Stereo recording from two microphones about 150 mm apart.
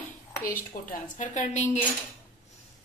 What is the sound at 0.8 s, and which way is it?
Speech, 55° left (ahead or behind).